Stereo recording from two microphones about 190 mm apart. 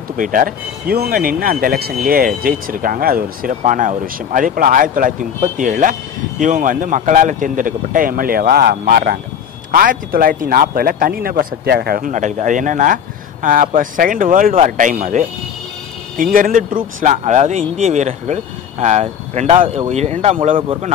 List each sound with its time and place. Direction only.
0.2 s speech: 45° right (ahead or behind); by 20.9 s 30° right (ahead or behind)